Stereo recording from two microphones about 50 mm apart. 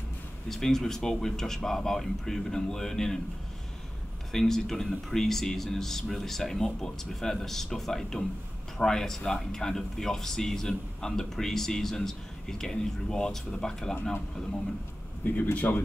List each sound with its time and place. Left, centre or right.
0.5 s speech: centre
4.3 s speech: centre
15.5 s speech: left